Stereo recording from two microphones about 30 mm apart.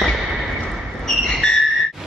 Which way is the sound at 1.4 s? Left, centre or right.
Left.